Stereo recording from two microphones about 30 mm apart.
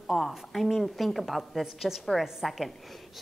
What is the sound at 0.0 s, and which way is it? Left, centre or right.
A woman's voice, centre.